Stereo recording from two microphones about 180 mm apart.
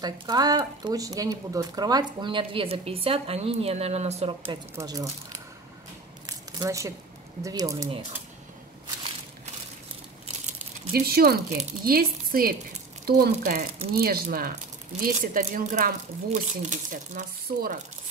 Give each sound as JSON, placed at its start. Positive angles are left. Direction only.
{"t": 0.0, "sound": "speech", "side_deg": -20}
{"t": 4.7, "sound": "speech", "side_deg": -20}
{"t": 6.2, "sound": "squish", "side_deg": -20}
{"t": 7.4, "sound": "speech", "side_deg": -20}
{"t": 10.9, "sound": "speech", "side_deg": -60}